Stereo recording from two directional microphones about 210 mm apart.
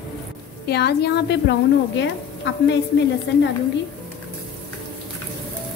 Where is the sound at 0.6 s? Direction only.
50° left (ahead or behind).